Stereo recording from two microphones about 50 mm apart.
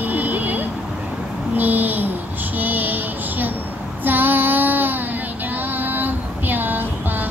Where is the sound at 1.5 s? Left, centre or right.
Right.